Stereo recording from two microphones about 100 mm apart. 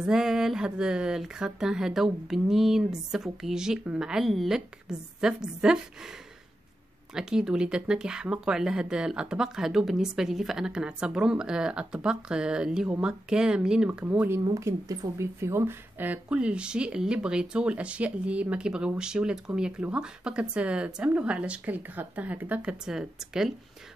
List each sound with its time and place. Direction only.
0.0 s speech: 5° right (ahead or behind)
7.2 s speech: 5° right (ahead or behind)
13.8 s speech: 20° right (ahead or behind)
14.5 s speech: 35° right (ahead or behind); by 23.5 s 5° right (ahead or behind)